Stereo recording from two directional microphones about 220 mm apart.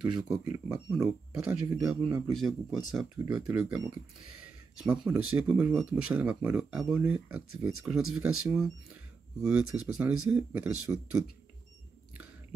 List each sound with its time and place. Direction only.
0.3 s speech: 5° right (ahead or behind)
2.0 s speech: 15° right (ahead or behind)
2.3 s speech: centre (ahead or behind)